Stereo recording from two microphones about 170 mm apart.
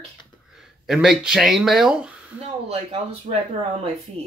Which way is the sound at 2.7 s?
35° right (ahead or behind).